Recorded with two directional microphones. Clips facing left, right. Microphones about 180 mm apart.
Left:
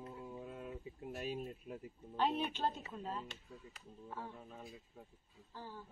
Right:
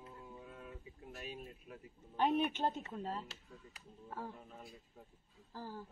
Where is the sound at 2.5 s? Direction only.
20° right (ahead or behind).